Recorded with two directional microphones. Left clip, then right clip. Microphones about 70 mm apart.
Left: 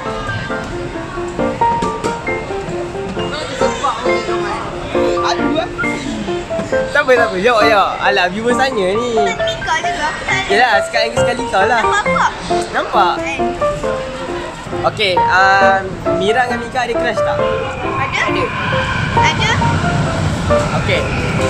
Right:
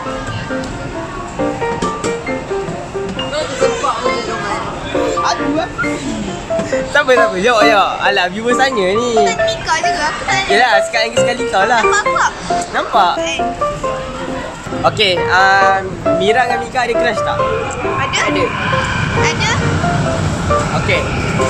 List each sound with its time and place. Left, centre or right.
5.2 s music: centre
6.9 s a man's voice: centre
14.8 s speech: centre
18.1 s a sound: centre
19.2 s music: centre
20.7 s speech: centre